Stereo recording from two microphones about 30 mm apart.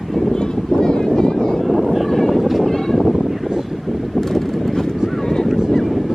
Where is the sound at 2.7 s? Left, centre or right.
Centre.